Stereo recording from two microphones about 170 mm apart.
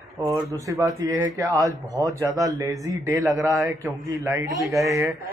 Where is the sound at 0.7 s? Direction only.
20° right (ahead or behind).